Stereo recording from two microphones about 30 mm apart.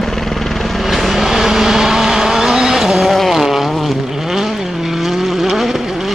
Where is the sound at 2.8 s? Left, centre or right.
Centre.